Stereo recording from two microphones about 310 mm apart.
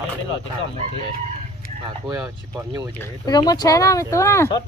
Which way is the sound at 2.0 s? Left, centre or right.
Centre.